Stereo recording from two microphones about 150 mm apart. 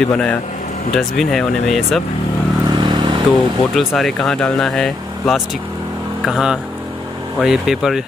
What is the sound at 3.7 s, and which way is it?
Speech, centre (ahead or behind).